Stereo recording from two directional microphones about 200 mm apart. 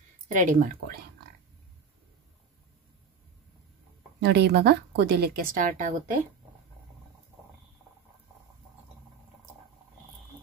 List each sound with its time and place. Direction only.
0.3 s speech: 40° right (ahead or behind)
4.2 s speech: 55° right (ahead or behind)